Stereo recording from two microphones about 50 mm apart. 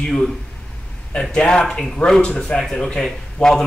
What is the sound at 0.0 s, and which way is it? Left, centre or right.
Speech, centre.